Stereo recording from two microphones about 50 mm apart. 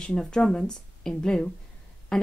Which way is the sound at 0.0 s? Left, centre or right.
Centre.